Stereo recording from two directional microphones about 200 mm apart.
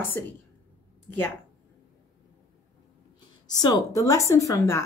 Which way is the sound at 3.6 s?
20° left (ahead or behind).